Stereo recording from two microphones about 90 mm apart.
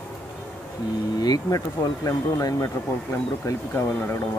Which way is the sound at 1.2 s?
45° left (ahead or behind).